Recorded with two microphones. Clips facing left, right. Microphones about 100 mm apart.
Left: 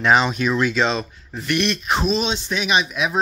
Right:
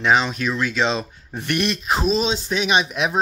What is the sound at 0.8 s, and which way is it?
Speech, 20° right (ahead or behind).